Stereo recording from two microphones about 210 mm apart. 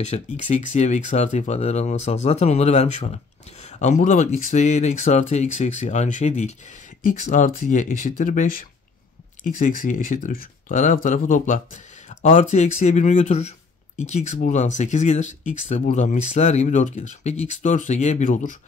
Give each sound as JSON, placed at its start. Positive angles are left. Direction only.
{"t": 0.0, "sound": "speech", "side_deg": 30}